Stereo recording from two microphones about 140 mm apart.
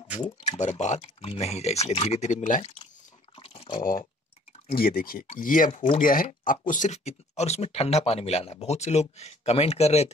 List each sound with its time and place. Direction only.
0.2 s speech: 55° left (ahead or behind)
3.3 s a sound: 40° left (ahead or behind)
4.6 s speech: 90° left
5.3 s speech: 75° left (ahead or behind); by 10.1 s 50° left (ahead or behind)